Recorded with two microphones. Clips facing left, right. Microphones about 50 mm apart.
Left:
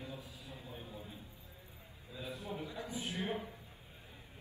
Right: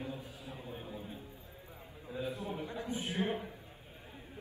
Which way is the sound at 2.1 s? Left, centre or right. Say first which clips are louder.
Right 5 dB; right.